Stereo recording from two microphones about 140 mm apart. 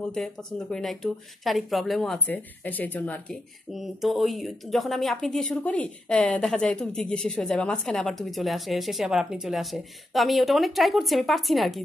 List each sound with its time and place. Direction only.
0.0 s speech: 5° left (ahead or behind)
3.7 s speech: centre (ahead or behind)